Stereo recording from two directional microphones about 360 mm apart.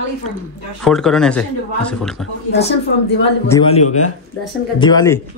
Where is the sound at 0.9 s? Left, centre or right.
Centre.